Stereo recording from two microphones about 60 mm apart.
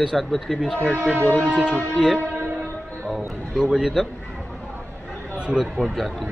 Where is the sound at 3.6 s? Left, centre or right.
Centre.